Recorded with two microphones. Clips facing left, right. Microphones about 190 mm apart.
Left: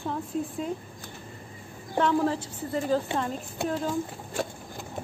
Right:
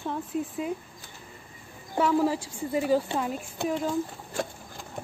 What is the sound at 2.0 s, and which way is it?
A woman's voice, 5° right (ahead or behind).